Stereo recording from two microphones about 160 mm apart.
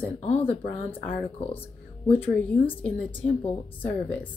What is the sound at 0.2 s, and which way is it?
Speech, 40° left (ahead or behind).